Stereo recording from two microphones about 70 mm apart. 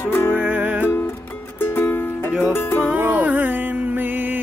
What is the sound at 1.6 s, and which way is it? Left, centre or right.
Music, left.